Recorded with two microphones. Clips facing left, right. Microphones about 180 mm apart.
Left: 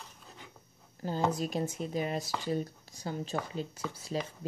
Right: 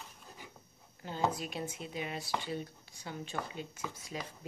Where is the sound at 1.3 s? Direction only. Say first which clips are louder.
Left 7 dB; 40° left (ahead or behind).